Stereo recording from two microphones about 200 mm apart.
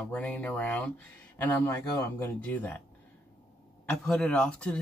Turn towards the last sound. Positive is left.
turn(degrees=5)  # may be behind; listen again after turning